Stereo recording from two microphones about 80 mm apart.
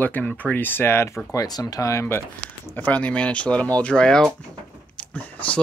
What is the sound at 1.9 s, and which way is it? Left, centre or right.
Speech, left.